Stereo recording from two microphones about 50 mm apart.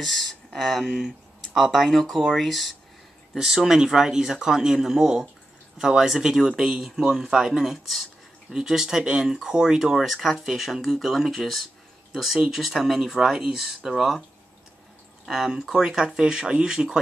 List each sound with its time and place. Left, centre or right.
0.0 s speech: centre
0.8 s speech: centre
1.5 s speech: centre
3.3 s speech: centre
15.2 s speech: centre